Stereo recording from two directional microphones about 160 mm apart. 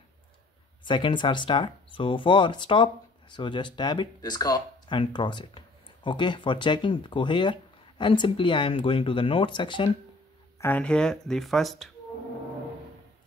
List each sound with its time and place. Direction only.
0.8 s speech: 30° left (ahead or behind)
10.6 s speech: 10° left (ahead or behind)